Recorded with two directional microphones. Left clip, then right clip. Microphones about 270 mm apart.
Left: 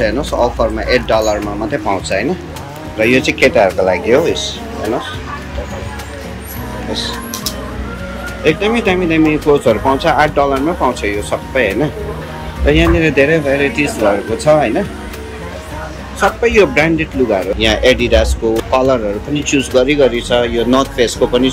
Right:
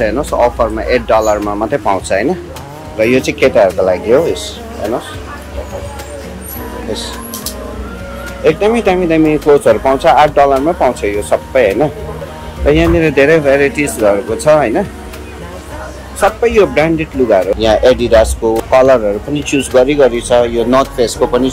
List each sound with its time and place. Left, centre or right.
0.0 s speech: centre
8.5 s speech: centre
16.2 s speech: centre